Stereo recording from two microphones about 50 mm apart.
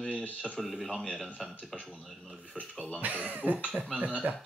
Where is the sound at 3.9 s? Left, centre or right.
Right.